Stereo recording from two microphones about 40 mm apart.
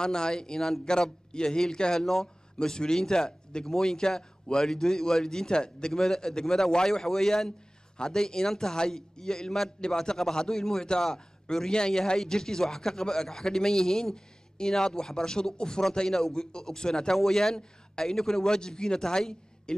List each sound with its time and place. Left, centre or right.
0.0 s a man's voice: centre